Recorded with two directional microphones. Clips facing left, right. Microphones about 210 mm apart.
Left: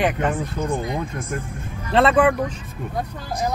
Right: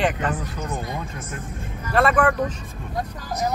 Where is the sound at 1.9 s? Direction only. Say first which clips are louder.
Left 3 dB; 25° left (ahead or behind).